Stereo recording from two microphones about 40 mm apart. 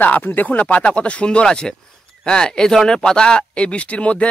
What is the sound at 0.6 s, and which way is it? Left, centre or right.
Speech, left.